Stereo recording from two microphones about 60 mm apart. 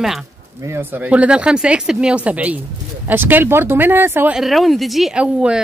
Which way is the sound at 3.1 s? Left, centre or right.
Right.